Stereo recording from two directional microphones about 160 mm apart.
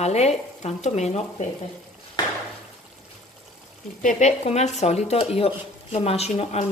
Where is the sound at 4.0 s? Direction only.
50° left (ahead or behind).